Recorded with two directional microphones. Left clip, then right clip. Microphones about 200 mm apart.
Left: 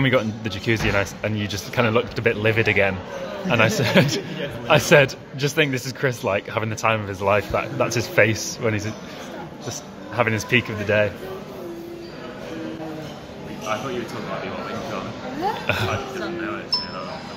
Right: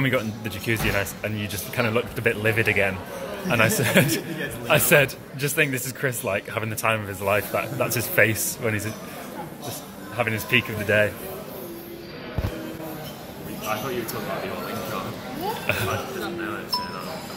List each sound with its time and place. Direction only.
0.0 s a man's voice: 15° left (ahead or behind)
10.1 s a man's voice: 15° left (ahead or behind)
10.9 s a man's voice: centre (ahead or behind)
15.6 s speech: 10° left (ahead or behind)